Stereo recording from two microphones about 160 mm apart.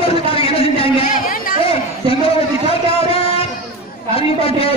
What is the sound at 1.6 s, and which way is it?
Chatter, 35° left (ahead or behind).